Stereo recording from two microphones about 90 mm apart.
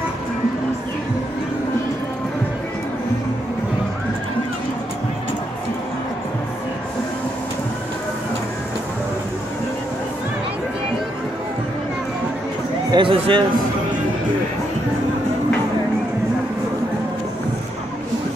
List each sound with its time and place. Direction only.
12.9 s speech: 70° right (ahead or behind)